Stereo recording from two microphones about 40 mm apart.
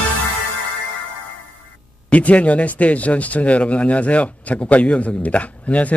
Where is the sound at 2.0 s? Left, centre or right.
Left.